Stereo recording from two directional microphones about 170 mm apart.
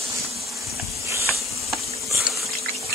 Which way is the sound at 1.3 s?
Centre (ahead or behind).